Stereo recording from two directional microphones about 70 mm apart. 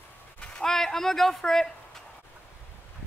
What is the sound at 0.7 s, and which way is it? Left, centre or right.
A man's voice, centre.